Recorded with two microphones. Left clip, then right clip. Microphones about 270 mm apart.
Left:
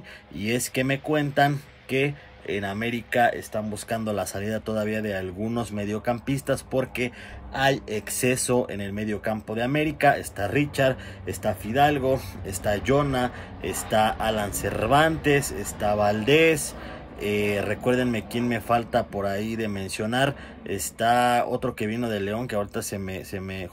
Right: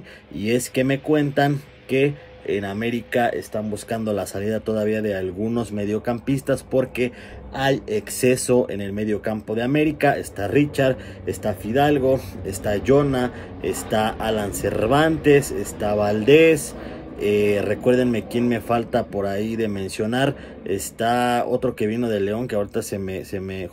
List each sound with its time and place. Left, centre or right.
0.5 s a man's voice: centre